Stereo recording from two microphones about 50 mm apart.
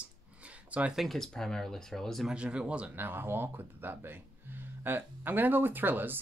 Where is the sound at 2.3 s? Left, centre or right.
Right.